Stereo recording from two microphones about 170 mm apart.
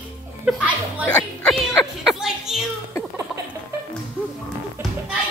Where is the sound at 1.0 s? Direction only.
5° left (ahead or behind).